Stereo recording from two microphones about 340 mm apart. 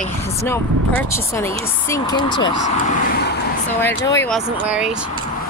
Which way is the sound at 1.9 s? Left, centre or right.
Centre.